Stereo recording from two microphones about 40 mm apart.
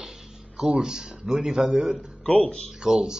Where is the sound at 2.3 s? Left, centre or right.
Left.